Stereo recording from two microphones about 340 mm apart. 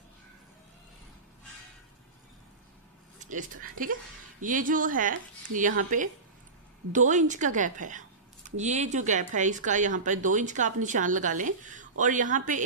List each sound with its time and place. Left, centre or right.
3.8 s speech: right